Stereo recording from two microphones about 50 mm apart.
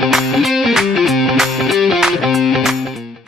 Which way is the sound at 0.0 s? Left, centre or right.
Centre.